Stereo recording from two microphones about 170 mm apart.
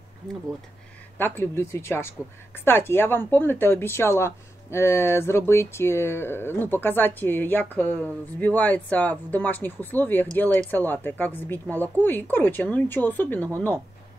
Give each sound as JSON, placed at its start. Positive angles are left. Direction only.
{"t": 1.1, "sound": "speech", "side_deg": 15}